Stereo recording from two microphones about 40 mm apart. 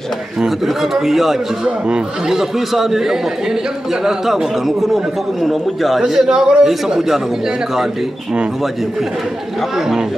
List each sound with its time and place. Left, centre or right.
0.9 s a man's voice: centre
4.3 s a man's voice: centre
5.9 s speech: centre